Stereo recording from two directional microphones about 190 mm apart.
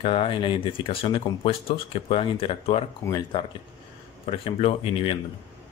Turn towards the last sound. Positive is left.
turn(degrees=30)  # may be behind; listen again after turning